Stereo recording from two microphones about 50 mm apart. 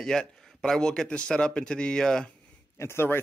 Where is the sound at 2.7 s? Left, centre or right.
Left.